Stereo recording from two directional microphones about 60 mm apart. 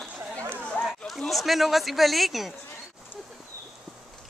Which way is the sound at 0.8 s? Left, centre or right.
Centre.